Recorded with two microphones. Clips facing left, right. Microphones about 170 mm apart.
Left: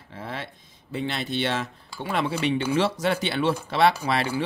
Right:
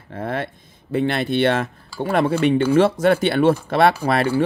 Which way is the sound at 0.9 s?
60° right (ahead or behind).